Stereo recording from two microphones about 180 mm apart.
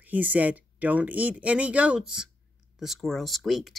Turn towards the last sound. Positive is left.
turn(degrees=0)  # may be behind; listen again after turning